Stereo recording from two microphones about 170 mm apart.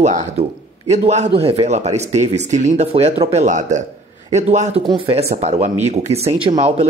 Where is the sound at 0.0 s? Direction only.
40° right (ahead or behind).